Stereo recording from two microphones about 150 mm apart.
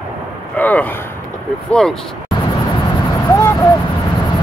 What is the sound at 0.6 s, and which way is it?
Speech, 10° left (ahead or behind).